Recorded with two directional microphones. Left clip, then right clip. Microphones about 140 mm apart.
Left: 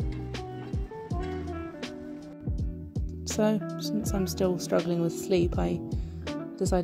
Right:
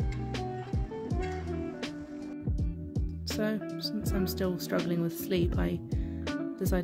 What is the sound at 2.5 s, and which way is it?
Music, centre (ahead or behind).